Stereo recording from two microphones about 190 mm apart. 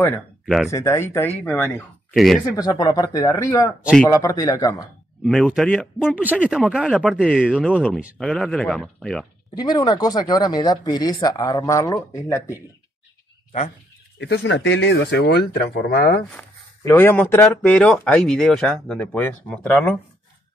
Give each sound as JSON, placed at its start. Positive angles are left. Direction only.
{"t": 0.7, "sound": "speech", "side_deg": 15}
{"t": 2.1, "sound": "speech", "side_deg": 0}
{"t": 2.5, "sound": "speech", "side_deg": 20}
{"t": 3.8, "sound": "speech", "side_deg": 5}
{"t": 4.1, "sound": "speech", "side_deg": 20}
{"t": 5.2, "sound": "speech", "side_deg": 0}
{"t": 9.6, "sound": "speech", "side_deg": 20}
{"t": 14.1, "sound": "speech", "side_deg": 70}
{"t": 16.3, "sound": "speech", "side_deg": 15}